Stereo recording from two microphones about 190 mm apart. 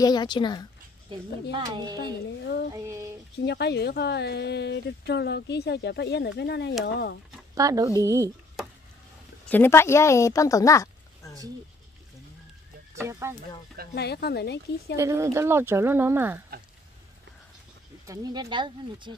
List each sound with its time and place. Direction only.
0.0 s a woman's voice: 20° left (ahead or behind)
1.5 s speech: 20° right (ahead or behind)
2.7 s a sound: 15° right (ahead or behind)
3.3 s speech: 60° left (ahead or behind)
7.5 s speech: 20° right (ahead or behind)
9.5 s a woman's voice: 10° left (ahead or behind)
12.9 s speech: 15° right (ahead or behind)
13.9 s speech: 60° left (ahead or behind)
15.0 s speech: 15° right (ahead or behind)
18.0 s speech: 20° right (ahead or behind)